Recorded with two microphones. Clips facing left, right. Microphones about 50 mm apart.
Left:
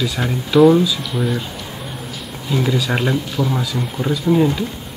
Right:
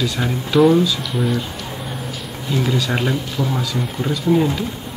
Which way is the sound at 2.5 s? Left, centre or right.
Centre.